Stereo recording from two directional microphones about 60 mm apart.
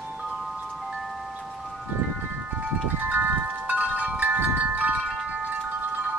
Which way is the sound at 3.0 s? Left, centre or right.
Right.